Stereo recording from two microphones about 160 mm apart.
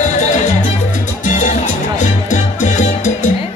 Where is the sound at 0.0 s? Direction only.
50° left (ahead or behind).